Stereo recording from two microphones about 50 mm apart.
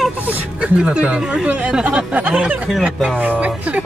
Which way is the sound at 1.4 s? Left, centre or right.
Right.